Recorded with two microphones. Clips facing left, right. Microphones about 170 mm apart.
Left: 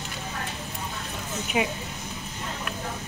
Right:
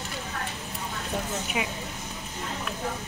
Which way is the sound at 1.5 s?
30° left (ahead or behind).